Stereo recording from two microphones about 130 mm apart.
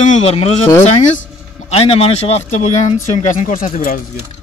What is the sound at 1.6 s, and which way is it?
Speech, 55° left (ahead or behind).